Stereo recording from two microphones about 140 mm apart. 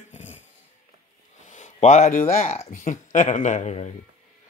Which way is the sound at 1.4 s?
60° left (ahead or behind).